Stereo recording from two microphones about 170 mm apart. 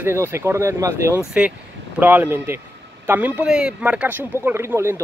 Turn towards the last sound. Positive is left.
turn(degrees=-15)  # may be behind; listen again after turning